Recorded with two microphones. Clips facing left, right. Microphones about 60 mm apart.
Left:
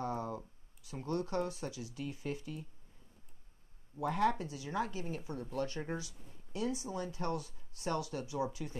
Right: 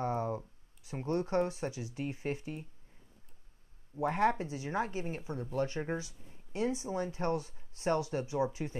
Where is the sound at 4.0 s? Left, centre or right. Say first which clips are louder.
Right 3 dB; right.